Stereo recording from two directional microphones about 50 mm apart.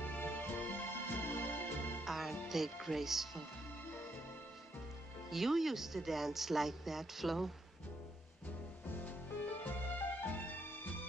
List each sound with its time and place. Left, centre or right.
0.0 s music: left
2.0 s music: centre
2.5 s speech: centre
5.3 s speech: centre
9.6 s music: left